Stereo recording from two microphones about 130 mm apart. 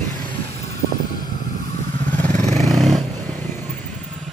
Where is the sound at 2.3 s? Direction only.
60° right (ahead or behind).